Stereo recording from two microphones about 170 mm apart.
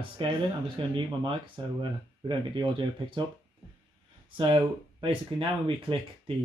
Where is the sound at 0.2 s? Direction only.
30° right (ahead or behind).